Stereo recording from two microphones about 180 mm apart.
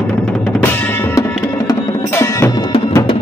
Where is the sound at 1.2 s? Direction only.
15° left (ahead or behind).